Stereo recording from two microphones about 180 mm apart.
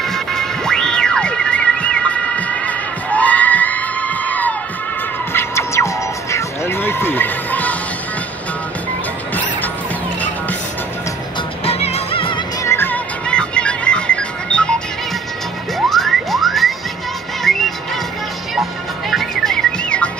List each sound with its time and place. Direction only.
0.0 s music: centre (ahead or behind)
11.6 s music: 35° left (ahead or behind)
12.6 s music: 10° left (ahead or behind)
15.9 s music: centre (ahead or behind)